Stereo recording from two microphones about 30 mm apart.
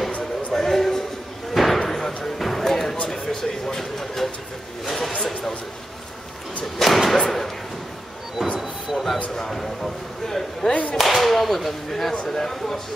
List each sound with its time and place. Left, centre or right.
0.5 s music: centre
1.5 s slam: centre
1.8 s basketball bounce: centre
3.1 s a sound: centre
6.6 s slam: centre
8.4 s a sound: centre
8.9 s basketball bounce: centre
9.5 s a man's voice: centre
10.7 s speech: left
11.0 s a man's voice: centre